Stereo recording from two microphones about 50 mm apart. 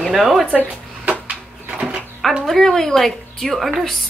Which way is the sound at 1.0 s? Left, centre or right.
Right.